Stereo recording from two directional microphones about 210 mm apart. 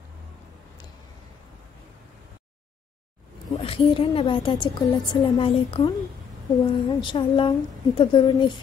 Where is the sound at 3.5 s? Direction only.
25° left (ahead or behind).